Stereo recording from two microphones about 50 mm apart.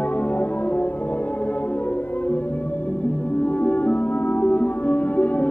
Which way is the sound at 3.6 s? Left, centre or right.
Left.